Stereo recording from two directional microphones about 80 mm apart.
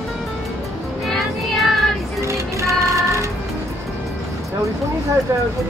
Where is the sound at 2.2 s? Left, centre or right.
Right.